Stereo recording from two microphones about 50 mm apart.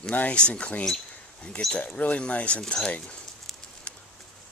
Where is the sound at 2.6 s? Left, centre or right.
Centre.